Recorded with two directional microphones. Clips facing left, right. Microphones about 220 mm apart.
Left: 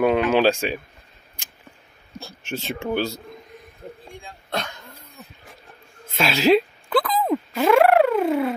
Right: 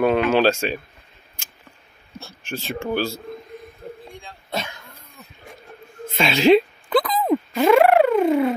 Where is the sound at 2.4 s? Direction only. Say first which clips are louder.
Even; 25° left (ahead or behind).